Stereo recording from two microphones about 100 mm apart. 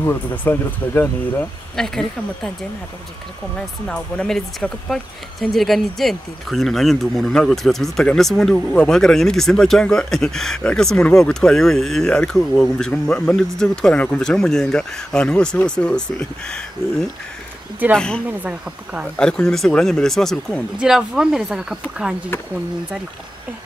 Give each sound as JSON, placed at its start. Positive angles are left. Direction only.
{"t": 0.0, "sound": "speech", "side_deg": 20}
{"t": 1.8, "sound": "speech", "side_deg": 5}
{"t": 3.8, "sound": "speech", "side_deg": 10}
{"t": 18.4, "sound": "speech", "side_deg": -15}
{"t": 19.1, "sound": "speech", "side_deg": 10}
{"t": 20.8, "sound": "speech", "side_deg": -5}